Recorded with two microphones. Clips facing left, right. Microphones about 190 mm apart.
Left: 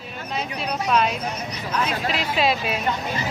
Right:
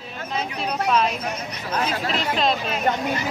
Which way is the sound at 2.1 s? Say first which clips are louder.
Even; 5° left (ahead or behind).